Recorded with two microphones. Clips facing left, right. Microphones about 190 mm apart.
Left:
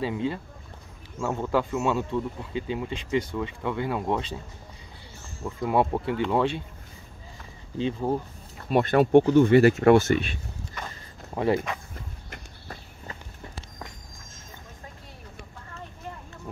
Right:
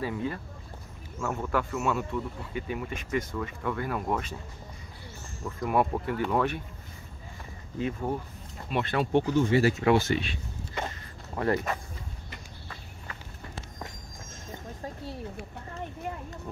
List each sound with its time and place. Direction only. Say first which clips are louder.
0.0 s speech: left 3 dB; 25° left (ahead or behind)
5.4 s speech: left 3 dB; 25° left (ahead or behind)
7.7 s speech: left 4 dB; 25° left (ahead or behind)
8.6 s speech: left 8 dB; 45° left (ahead or behind)
9.3 s speech: left 7 dB; 60° left (ahead or behind)
11.3 s speech: left 3 dB; 20° left (ahead or behind)